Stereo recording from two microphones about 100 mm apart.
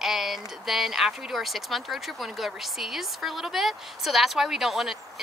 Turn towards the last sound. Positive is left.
turn(degrees=0)  # may be behind; listen again after turning